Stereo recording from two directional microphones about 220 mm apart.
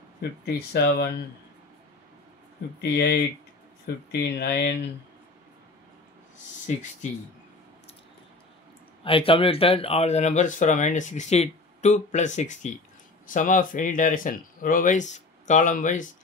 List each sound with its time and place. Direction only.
0.6 s speech: 45° left (ahead or behind)
2.8 s speech: 50° left (ahead or behind)
9.0 s speech: 25° left (ahead or behind)